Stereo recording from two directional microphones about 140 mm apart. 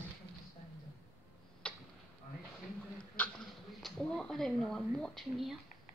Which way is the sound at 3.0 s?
5° left (ahead or behind).